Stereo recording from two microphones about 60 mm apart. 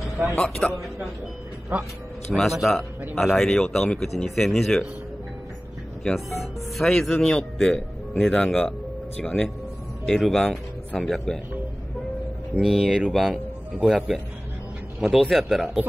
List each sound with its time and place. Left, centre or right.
0.6 s a man's voice: left
1.7 s a man's voice: right
2.3 s speech: centre
6.0 s speech: centre
12.5 s speech: centre